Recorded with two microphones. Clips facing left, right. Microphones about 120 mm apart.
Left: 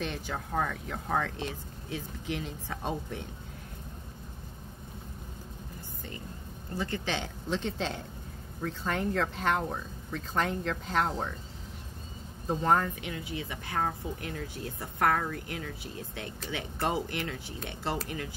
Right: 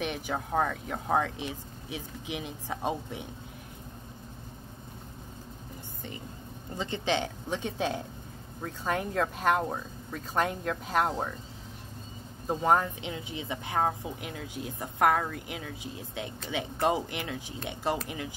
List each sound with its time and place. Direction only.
0.0 s a woman's voice: 15° right (ahead or behind)
6.7 s a woman's voice: 20° right (ahead or behind)
12.4 s a woman's voice: 10° right (ahead or behind)